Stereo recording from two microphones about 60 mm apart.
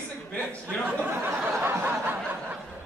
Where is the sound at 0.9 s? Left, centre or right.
Right.